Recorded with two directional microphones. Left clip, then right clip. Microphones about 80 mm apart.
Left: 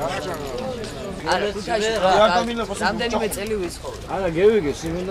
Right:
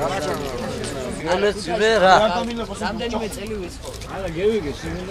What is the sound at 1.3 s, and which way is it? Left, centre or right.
Speech, left.